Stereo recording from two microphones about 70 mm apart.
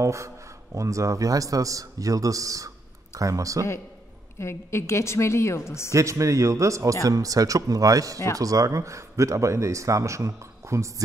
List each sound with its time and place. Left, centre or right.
0.0 s speech: right
4.4 s a woman's voice: left
5.9 s speech: right